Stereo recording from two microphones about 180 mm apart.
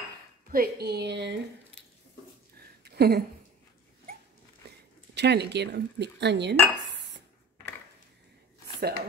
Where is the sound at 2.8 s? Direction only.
60° right (ahead or behind).